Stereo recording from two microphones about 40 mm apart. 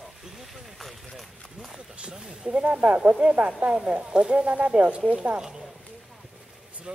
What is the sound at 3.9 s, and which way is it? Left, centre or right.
Speech, right.